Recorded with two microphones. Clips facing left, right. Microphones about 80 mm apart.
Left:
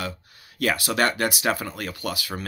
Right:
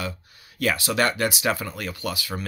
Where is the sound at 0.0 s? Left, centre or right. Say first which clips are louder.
Even; left.